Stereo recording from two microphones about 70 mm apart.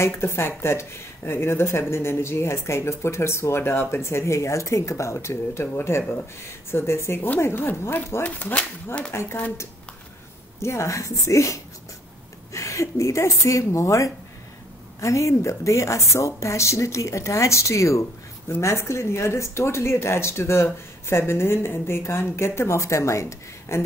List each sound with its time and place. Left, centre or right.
0.0 s speech: left
8.2 s speech: left
9.1 s speech: left
10.6 s a woman's voice: left